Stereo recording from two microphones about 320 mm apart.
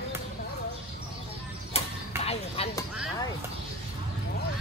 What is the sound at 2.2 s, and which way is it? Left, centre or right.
Chopping, centre.